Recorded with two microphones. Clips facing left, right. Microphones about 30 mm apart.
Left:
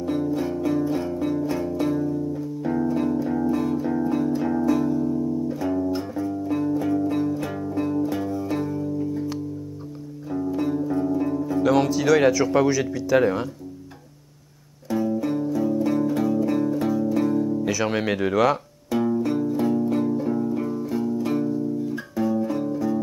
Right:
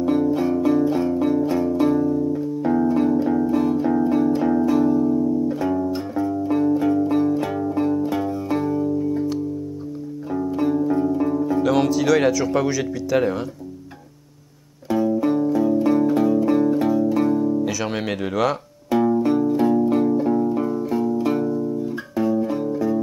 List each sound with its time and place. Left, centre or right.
0.0 s music: centre
10.3 s music: centre
11.6 s speech: centre
15.3 s music: centre
17.1 s music: centre
17.8 s speech: centre
18.9 s music: centre
19.4 s music: right